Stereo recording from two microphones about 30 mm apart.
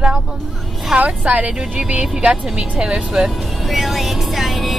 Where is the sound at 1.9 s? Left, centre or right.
Right.